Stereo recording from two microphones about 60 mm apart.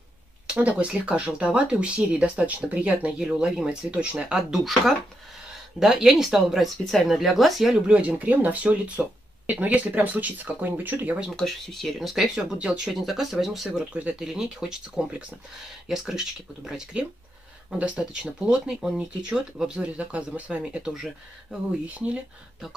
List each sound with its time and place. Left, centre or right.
0.5 s speech: right; by 7.7 s centre
7.8 s speech: right
11.3 s speech: centre
18.7 s speech: centre
18.9 s speech: centre
20.0 s speech: right
20.9 s speech: centre
21.8 s speech: right